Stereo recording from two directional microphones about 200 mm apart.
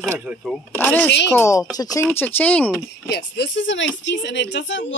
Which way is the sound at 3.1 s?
65° left (ahead or behind).